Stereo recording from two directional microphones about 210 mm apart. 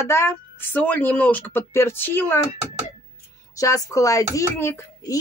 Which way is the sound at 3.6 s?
15° left (ahead or behind).